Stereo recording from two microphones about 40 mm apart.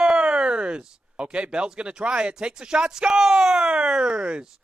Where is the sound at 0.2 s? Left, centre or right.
Right.